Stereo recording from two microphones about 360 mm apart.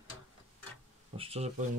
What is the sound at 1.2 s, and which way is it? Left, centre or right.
Speech, centre.